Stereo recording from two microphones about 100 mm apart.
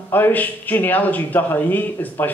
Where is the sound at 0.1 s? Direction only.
20° left (ahead or behind).